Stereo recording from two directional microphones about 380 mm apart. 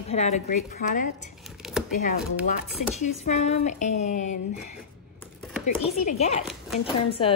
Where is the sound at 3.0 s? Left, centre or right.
Centre.